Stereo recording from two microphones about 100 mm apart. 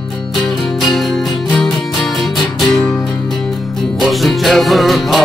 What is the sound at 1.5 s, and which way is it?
Music, 5° left (ahead or behind).